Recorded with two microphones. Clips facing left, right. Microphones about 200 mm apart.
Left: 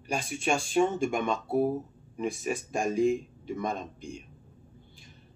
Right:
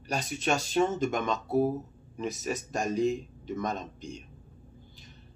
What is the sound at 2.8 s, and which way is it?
Speech, 50° left (ahead or behind).